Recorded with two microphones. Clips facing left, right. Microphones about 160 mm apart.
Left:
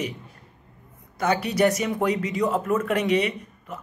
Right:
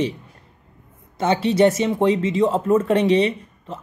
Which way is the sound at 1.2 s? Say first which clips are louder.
Right 5 dB; 25° right (ahead or behind).